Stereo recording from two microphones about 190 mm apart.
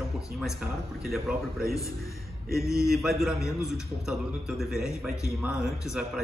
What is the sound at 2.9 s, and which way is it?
A man's voice, centre (ahead or behind).